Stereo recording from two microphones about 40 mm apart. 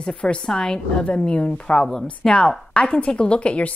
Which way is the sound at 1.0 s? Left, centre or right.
Left.